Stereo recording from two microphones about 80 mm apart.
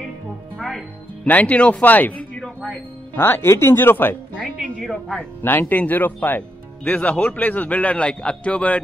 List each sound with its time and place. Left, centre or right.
0.6 s music: centre
1.3 s speech: centre
3.2 s speech: left
5.4 s speech: left